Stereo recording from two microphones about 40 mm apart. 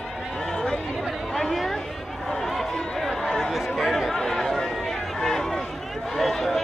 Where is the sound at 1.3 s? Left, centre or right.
Centre.